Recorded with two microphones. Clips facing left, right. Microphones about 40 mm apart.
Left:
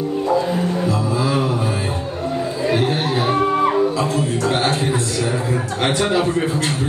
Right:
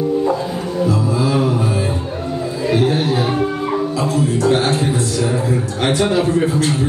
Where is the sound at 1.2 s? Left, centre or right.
Centre.